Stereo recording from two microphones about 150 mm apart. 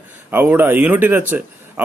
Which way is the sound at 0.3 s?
10° right (ahead or behind).